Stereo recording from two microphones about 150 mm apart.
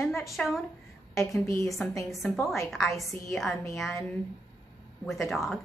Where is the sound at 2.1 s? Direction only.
Centre (ahead or behind).